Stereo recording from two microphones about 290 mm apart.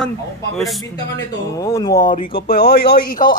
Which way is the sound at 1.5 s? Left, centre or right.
Centre.